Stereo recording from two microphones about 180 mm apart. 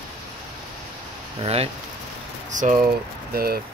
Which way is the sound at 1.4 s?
35° right (ahead or behind).